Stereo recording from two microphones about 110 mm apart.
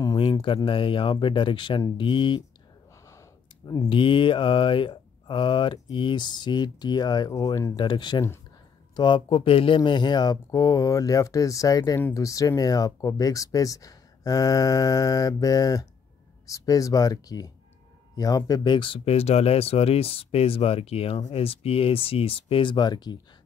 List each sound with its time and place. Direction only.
0.0 s a sound: 40° left (ahead or behind)
0.7 s speech: 50° left (ahead or behind)
3.1 s a sound: 30° left (ahead or behind)
3.9 s speech: 50° left (ahead or behind)
7.3 s speech: 30° left (ahead or behind)
7.7 s speech: 45° left (ahead or behind)
9.8 s speech: 45° left (ahead or behind)